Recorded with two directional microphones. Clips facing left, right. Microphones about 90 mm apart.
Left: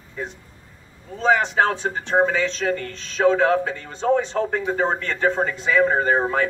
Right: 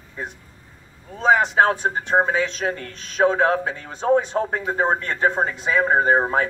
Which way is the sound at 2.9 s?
45° right (ahead or behind).